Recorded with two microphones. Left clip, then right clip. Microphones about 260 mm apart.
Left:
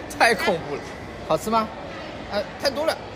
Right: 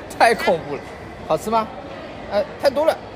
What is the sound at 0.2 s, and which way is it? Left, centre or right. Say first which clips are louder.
Speech: right 4 dB; centre.